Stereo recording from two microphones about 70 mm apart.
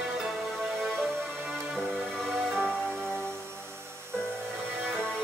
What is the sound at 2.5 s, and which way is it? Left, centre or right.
Music, right.